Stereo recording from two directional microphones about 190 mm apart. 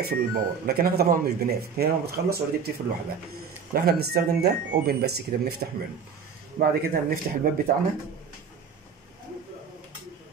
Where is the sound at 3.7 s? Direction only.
55° right (ahead or behind).